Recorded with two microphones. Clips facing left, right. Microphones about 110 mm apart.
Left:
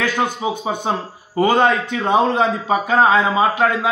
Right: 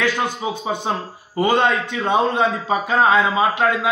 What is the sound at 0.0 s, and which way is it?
A man's voice, 25° left (ahead or behind).